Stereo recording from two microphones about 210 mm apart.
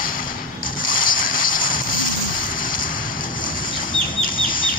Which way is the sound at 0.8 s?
40° left (ahead or behind).